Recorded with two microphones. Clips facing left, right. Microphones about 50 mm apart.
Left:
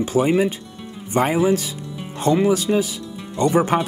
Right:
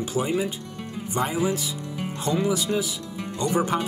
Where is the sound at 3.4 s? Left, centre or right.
Left.